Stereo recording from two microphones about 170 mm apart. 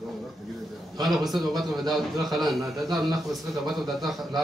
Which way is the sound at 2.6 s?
25° right (ahead or behind).